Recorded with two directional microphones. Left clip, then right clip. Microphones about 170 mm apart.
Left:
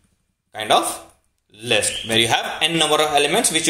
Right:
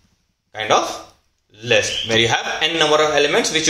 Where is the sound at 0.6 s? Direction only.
40° left (ahead or behind).